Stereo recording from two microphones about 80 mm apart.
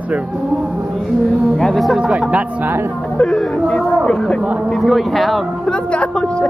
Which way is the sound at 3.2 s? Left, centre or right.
Centre.